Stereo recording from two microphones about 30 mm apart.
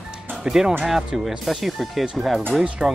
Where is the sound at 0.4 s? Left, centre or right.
Centre.